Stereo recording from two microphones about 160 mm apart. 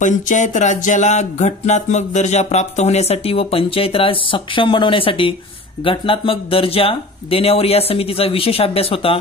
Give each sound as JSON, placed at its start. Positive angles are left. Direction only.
{"t": 0.0, "sound": "music", "side_deg": 50}
{"t": 5.9, "sound": "speech", "side_deg": 35}